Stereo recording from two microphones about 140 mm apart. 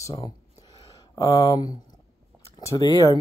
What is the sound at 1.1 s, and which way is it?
Speech, 25° left (ahead or behind).